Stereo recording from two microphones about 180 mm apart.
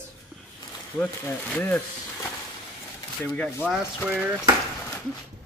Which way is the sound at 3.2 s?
5° left (ahead or behind).